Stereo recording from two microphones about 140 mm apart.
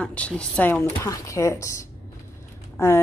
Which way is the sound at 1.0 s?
25° left (ahead or behind).